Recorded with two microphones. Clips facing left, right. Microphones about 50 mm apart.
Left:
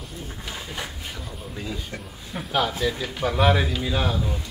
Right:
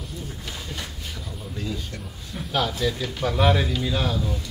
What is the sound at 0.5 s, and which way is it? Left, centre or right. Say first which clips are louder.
Speech: left 4 dB; centre.